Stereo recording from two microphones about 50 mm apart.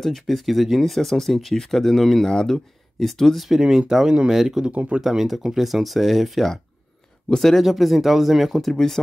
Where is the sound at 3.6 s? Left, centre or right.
Centre.